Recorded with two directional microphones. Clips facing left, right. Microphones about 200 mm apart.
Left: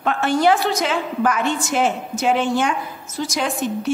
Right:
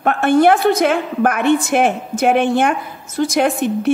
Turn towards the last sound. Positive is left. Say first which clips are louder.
# right 6 dB
turn(degrees=-60)  # may be behind; listen again after turning